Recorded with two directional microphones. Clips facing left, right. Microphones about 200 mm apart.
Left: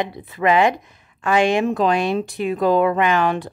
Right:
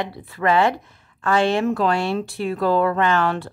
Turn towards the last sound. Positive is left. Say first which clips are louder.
# left 1 dB
turn(degrees=15)  # may be behind; listen again after turning